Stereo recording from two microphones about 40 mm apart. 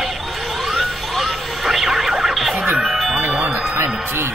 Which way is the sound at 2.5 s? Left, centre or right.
Right.